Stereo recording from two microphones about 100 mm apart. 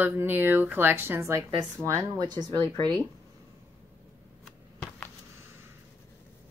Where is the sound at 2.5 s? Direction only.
55° right (ahead or behind).